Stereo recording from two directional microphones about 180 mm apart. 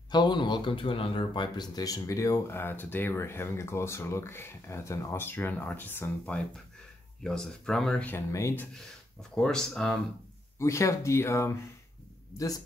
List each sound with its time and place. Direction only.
0.1 s speech: 25° left (ahead or behind)
9.3 s speech: 5° left (ahead or behind)
10.6 s a man's voice: 15° left (ahead or behind)